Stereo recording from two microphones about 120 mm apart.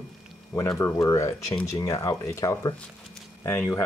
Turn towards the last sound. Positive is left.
turn(degrees=15)  # may be behind; listen again after turning